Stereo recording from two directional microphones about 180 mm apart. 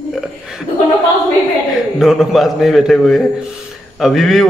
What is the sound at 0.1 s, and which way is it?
Chuckle, 5° right (ahead or behind).